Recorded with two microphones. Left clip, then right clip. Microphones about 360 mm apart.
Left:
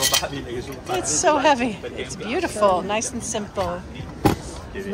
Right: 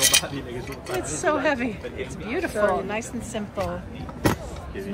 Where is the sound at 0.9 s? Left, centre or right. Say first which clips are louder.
Left 5 dB; centre.